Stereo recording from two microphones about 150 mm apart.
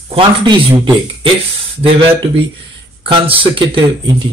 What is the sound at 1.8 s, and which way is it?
Speech, 35° right (ahead or behind).